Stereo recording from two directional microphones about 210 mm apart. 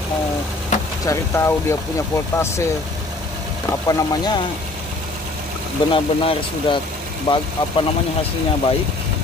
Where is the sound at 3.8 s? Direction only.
15° left (ahead or behind).